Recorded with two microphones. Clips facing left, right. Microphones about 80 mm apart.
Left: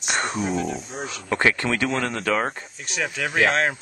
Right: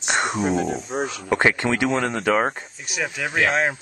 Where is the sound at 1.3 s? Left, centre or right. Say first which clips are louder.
Right 2 dB; centre.